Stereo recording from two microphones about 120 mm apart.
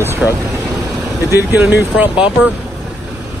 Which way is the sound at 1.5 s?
15° right (ahead or behind).